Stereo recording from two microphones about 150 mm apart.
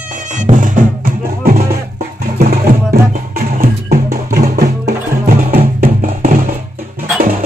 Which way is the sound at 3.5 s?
75° right (ahead or behind).